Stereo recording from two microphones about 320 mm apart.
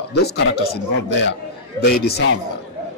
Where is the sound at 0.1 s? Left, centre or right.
Left.